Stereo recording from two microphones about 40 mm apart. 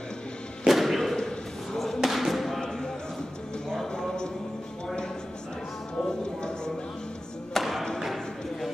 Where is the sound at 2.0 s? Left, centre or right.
Centre.